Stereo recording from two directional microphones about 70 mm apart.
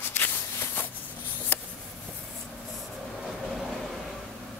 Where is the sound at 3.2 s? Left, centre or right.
Centre.